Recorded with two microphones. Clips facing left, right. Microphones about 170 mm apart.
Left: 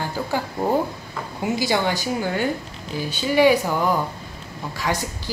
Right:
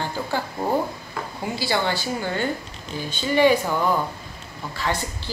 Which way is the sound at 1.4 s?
15° left (ahead or behind).